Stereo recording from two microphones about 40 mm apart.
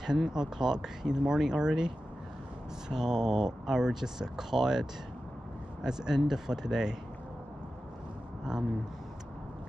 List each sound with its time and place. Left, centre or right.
0.0 s speech: centre
2.9 s speech: centre
5.9 s speech: centre